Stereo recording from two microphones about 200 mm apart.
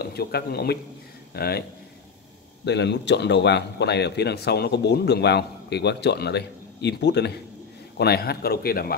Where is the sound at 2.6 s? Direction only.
60° left (ahead or behind).